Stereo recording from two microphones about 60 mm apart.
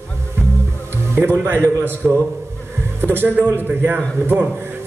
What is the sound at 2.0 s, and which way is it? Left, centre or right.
Speech, centre.